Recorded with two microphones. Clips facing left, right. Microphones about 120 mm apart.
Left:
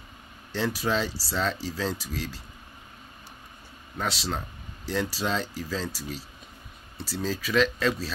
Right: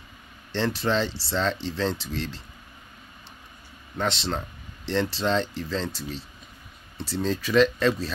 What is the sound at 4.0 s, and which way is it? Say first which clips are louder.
Speech: right 3 dB; 5° left (ahead or behind).